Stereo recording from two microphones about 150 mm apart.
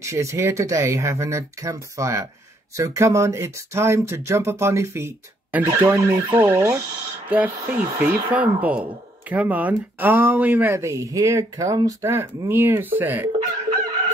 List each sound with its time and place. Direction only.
0.0 s speech: 20° right (ahead or behind)